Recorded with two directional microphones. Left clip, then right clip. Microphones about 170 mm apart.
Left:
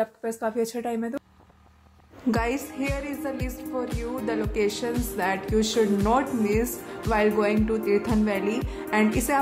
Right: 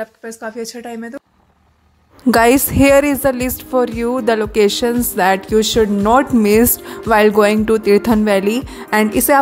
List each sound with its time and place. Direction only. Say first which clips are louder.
0.0 s speech: right 1 dB; centre (ahead or behind)
2.3 s a woman's voice: right 17 dB; 70° right (ahead or behind); by 9.4 s 50° right (ahead or behind)